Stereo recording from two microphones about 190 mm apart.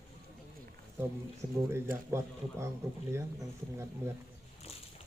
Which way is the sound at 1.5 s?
15° right (ahead or behind).